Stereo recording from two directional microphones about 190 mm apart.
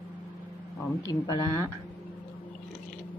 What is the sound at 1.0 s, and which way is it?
Speech, 20° left (ahead or behind).